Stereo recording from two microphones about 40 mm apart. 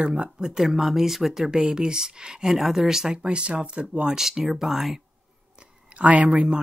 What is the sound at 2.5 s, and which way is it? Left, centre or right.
Speech, centre.